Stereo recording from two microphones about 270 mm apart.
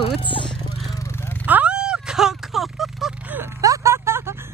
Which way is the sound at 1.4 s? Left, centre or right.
Centre.